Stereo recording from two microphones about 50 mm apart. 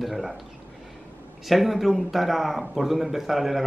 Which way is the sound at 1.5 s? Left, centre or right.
Centre.